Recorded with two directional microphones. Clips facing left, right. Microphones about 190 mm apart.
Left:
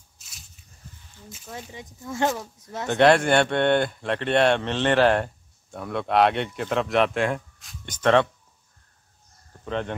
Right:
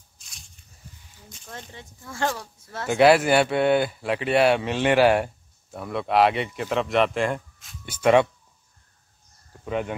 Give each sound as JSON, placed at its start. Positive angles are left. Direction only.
{"t": 0.2, "sound": "a sound", "side_deg": 5}
{"t": 1.3, "sound": "speech", "side_deg": 5}
{"t": 2.9, "sound": "speech", "side_deg": -5}
{"t": 9.7, "sound": "speech", "side_deg": -10}